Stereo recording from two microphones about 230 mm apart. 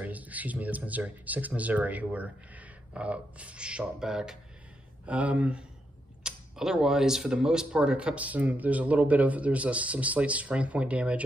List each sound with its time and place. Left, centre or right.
0.0 s speech: centre